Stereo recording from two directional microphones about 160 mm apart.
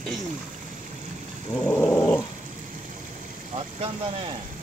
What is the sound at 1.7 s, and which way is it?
Dog, 10° left (ahead or behind).